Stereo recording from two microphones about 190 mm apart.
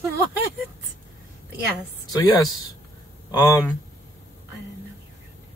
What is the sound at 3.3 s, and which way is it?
Speech, 20° left (ahead or behind).